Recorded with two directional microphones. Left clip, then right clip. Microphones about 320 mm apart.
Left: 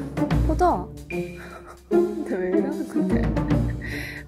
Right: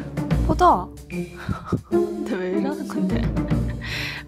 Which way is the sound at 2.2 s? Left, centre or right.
Centre.